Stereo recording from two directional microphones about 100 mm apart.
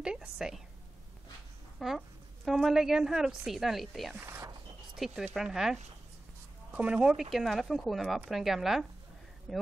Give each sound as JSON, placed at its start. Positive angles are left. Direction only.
{"t": 0.0, "sound": "a woman's voice", "side_deg": -5}
{"t": 1.8, "sound": "a woman's voice", "side_deg": 0}
{"t": 4.3, "sound": "a sound", "side_deg": -35}
{"t": 4.9, "sound": "a woman's voice", "side_deg": -5}